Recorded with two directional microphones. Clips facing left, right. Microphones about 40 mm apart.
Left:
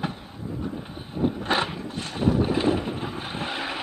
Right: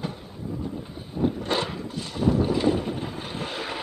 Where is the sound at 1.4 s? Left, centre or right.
Left.